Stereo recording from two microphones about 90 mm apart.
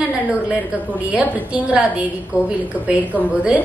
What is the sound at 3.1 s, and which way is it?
Speech, 15° right (ahead or behind).